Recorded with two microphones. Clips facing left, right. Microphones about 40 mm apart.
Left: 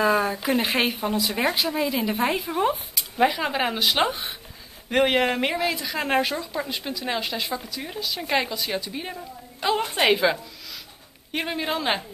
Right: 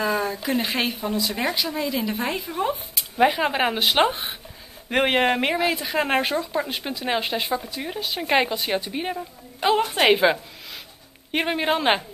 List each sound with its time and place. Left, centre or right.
0.0 s speech: centre
3.3 s a woman's voice: centre
11.3 s a woman's voice: right